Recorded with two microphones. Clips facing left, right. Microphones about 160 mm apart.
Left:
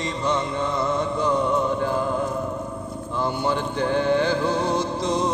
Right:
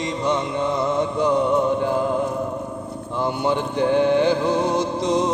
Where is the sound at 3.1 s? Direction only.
15° right (ahead or behind).